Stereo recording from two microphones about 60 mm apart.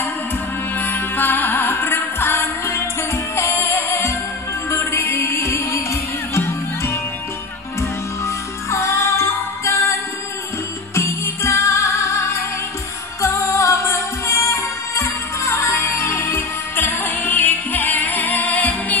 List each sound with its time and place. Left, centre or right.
0.7 s music: left
8.6 s music: left
11.0 s music: left